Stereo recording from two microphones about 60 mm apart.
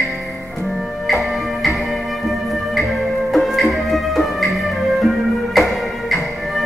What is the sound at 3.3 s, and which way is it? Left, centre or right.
Music, centre.